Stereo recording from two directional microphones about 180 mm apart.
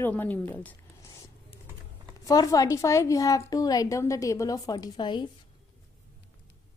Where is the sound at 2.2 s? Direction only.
20° left (ahead or behind).